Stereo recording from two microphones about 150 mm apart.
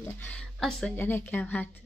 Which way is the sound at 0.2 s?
10° left (ahead or behind).